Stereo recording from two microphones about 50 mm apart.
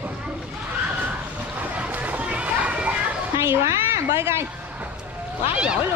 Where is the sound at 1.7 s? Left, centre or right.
Right.